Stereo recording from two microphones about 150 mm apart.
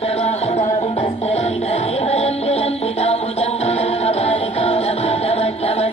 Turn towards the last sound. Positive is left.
turn(degrees=45)  # may be behind; listen again after turning